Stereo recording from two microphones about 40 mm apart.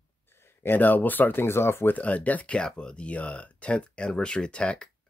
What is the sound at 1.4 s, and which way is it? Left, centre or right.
Speech, left.